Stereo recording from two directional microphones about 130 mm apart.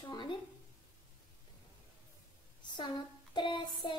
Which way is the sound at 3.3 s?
35° left (ahead or behind).